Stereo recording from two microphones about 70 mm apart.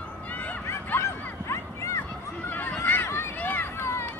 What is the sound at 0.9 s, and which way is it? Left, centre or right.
Bow-wow, left.